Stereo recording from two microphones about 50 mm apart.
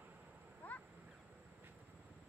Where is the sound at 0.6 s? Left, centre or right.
Left.